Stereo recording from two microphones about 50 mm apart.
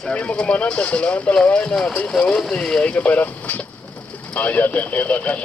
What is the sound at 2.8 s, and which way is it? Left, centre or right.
A man's voice, left.